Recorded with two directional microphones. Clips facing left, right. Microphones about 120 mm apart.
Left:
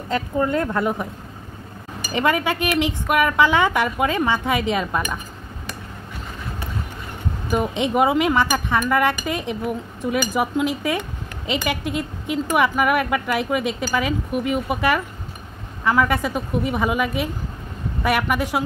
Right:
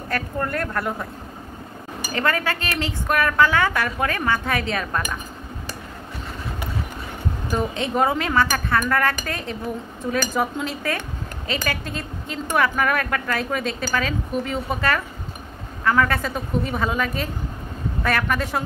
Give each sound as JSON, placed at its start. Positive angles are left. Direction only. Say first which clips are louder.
{"t": 0.1, "sound": "a woman's voice", "louder": "left 5 dB", "side_deg": 20}
{"t": 2.1, "sound": "a woman's voice", "louder": "left 3 dB", "side_deg": 15}
{"t": 7.5, "sound": "a woman's voice", "louder": "left 3 dB", "side_deg": 15}